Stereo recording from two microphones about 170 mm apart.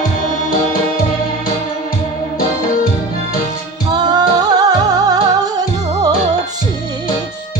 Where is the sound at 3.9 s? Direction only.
25° right (ahead or behind).